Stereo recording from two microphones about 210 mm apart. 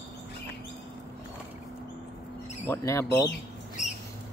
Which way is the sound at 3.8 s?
35° left (ahead or behind).